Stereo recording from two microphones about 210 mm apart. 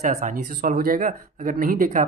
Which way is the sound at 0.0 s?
35° right (ahead or behind).